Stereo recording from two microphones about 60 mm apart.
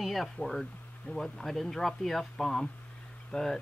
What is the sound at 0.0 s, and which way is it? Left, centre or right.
Speech, centre.